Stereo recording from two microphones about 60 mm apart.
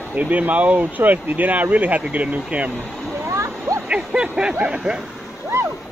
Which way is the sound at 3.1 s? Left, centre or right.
Right.